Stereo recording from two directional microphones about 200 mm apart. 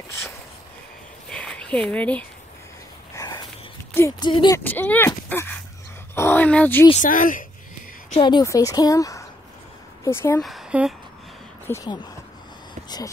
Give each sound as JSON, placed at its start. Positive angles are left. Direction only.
{"t": 1.3, "sound": "a sound", "side_deg": 5}
{"t": 3.2, "sound": "a sound", "side_deg": 20}
{"t": 3.9, "sound": "speech", "side_deg": 15}
{"t": 4.3, "sound": "speech", "side_deg": 25}
{"t": 4.6, "sound": "a woman's voice", "side_deg": 10}
{"t": 7.0, "sound": "speech", "side_deg": 40}
{"t": 8.2, "sound": "a woman's voice", "side_deg": 20}
{"t": 10.4, "sound": "speech", "side_deg": 0}
{"t": 11.6, "sound": "speech", "side_deg": 15}